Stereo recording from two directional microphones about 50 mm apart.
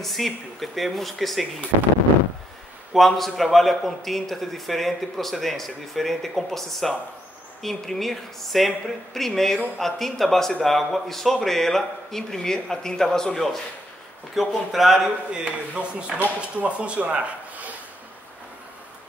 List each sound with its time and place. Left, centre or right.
0.0 s a man's voice: centre
2.9 s a man's voice: centre
15.0 s a man's voice: right